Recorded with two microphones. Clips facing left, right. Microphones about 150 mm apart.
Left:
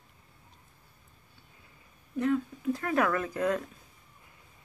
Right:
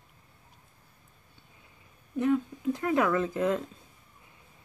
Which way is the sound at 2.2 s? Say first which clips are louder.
Right 2 dB; 20° right (ahead or behind).